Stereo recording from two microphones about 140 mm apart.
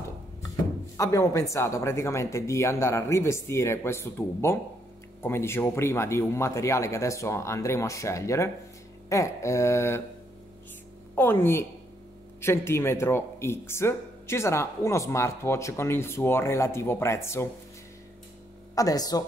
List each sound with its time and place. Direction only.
0.9 s speech: 20° left (ahead or behind)
11.1 s a woman's voice: 15° left (ahead or behind)
18.8 s speech: 25° left (ahead or behind)